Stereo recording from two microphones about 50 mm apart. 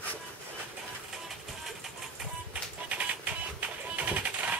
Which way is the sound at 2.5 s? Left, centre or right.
Right.